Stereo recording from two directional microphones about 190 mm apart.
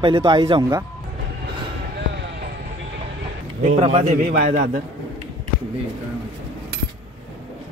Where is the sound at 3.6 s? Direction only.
30° right (ahead or behind).